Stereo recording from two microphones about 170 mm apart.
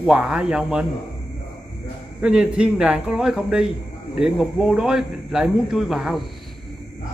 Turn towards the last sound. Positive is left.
turn(degrees=0)  # may be behind; listen again after turning